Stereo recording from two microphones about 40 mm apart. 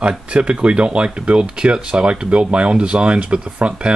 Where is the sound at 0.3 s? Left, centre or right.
Right.